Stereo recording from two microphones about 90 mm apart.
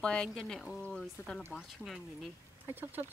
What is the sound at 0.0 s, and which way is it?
Speech, 10° left (ahead or behind).